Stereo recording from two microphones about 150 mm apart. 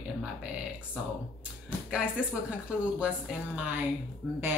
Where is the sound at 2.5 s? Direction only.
10° right (ahead or behind).